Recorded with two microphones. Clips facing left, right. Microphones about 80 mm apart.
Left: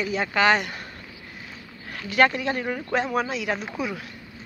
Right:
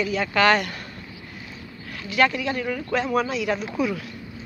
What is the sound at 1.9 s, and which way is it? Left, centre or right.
Speech, left.